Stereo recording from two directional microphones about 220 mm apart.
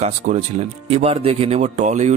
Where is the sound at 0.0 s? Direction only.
30° right (ahead or behind).